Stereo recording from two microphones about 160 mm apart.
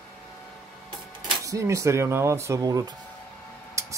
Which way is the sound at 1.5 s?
20° right (ahead or behind).